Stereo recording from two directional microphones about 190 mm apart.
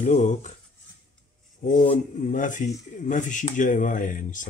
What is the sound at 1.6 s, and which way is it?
Speech, 45° left (ahead or behind).